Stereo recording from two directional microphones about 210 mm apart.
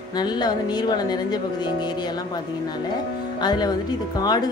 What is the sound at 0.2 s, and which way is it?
A woman's voice, 20° left (ahead or behind).